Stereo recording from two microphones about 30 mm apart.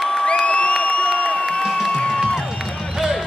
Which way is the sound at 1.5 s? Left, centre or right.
Left.